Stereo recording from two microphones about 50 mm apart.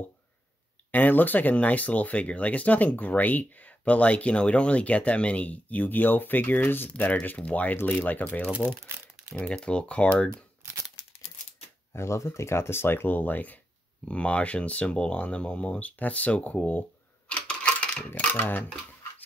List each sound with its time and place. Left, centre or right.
0.9 s speech: left
8.8 s crumpling: right
9.4 s speech: left
11.9 s speech: left
14.0 s speech: left
17.5 s coin: left